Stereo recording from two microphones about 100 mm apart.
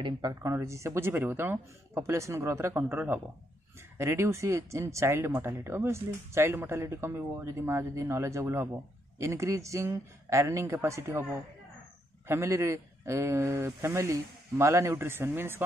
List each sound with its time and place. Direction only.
0.3 s speech: 30° right (ahead or behind)